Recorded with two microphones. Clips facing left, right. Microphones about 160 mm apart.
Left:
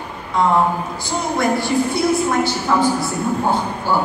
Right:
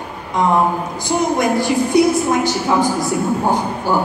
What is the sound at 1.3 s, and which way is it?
A woman's voice, 15° right (ahead or behind).